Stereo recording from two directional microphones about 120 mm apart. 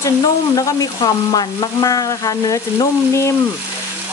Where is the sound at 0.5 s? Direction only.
35° left (ahead or behind).